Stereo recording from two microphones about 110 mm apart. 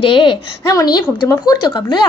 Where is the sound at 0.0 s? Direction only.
50° left (ahead or behind).